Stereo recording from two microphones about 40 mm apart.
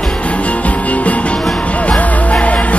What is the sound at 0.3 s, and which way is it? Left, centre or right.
Music, left.